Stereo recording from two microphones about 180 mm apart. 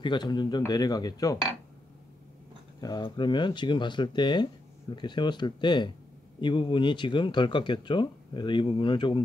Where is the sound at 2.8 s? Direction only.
20° left (ahead or behind).